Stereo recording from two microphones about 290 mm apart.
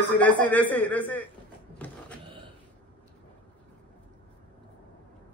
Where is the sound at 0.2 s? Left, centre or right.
Centre.